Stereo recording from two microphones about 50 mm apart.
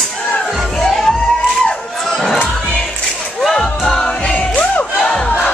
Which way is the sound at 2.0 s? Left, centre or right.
Centre.